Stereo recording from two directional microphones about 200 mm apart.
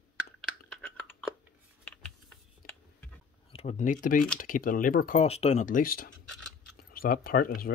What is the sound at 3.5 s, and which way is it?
Speech, 35° left (ahead or behind).